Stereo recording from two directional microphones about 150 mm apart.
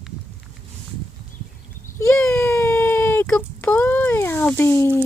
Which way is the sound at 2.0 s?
15° left (ahead or behind).